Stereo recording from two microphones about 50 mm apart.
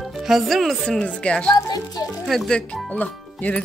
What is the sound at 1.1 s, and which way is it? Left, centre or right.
Speech, left.